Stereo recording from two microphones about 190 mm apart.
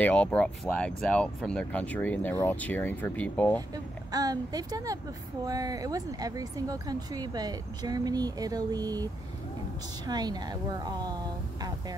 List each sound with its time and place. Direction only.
0.0 s speech: 5° left (ahead or behind)
4.1 s speech: 20° right (ahead or behind)